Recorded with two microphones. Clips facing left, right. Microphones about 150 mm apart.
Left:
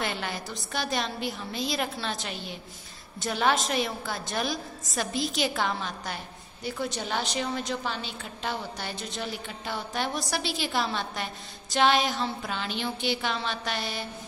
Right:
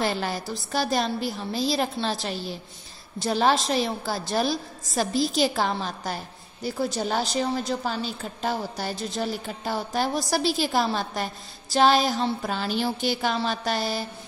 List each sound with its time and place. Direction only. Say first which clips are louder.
0.0 s a woman's voice: right 6 dB; 35° right (ahead or behind)